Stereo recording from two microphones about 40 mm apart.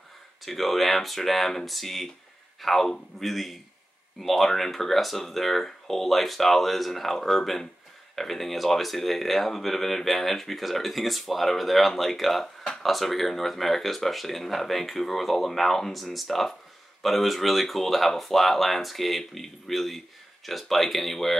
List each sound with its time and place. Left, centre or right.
0.4 s speech: centre